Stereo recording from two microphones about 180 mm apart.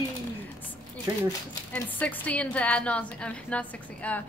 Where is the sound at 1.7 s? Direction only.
10° left (ahead or behind).